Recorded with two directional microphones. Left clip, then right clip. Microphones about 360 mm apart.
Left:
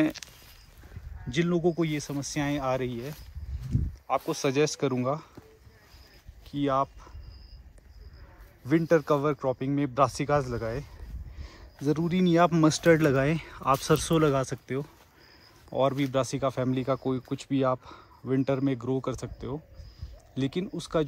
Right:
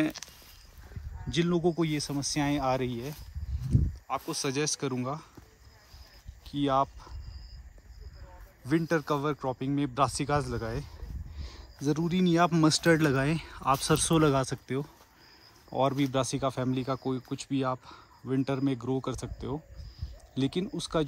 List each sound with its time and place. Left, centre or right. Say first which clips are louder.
0.2 s a sound: left 1 dB; right
1.2 s speech: left 1 dB; centre
6.4 s speech: even; centre
8.6 s speech: left 5 dB; centre